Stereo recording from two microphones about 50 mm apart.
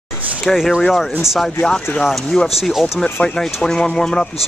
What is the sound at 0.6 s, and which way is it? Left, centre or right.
Speech, centre.